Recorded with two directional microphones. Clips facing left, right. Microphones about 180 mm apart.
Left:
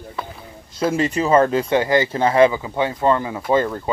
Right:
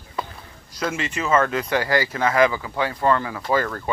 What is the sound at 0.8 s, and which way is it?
Speech, 35° left (ahead or behind).